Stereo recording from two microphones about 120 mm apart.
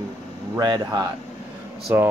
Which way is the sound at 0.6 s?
35° right (ahead or behind).